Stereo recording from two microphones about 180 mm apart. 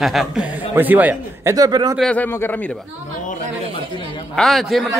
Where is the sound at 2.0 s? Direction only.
5° left (ahead or behind).